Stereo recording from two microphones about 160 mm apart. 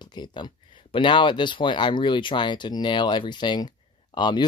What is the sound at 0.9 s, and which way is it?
Speech, 30° left (ahead or behind).